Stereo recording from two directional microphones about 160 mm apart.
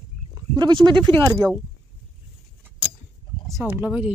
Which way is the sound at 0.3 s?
30° right (ahead or behind).